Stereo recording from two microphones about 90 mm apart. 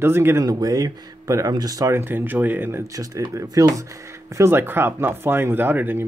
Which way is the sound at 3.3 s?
40° right (ahead or behind).